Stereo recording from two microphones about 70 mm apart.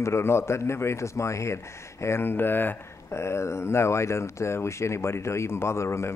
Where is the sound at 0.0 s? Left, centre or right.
Left.